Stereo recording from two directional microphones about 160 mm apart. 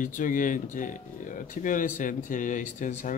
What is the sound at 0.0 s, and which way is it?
Speech, 55° left (ahead or behind).